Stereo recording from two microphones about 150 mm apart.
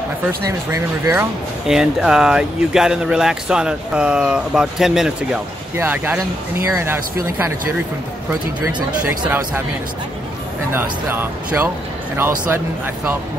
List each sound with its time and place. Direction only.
0.5 s speech: 20° right (ahead or behind)
1.7 s speech: 5° right (ahead or behind)
5.8 s speech: 15° right (ahead or behind)
10.7 s speech: 15° right (ahead or behind)